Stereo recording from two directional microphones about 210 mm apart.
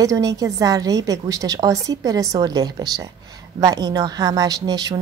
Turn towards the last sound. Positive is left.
turn(degrees=-20)  # may be behind; listen again after turning